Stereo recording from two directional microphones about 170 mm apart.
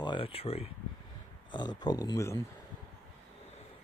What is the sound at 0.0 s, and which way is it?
Speech, 30° left (ahead or behind).